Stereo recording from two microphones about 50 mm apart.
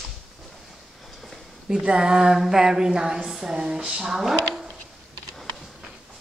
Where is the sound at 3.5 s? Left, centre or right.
Centre.